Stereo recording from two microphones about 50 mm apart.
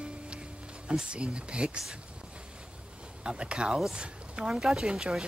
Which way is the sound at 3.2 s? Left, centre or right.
Right.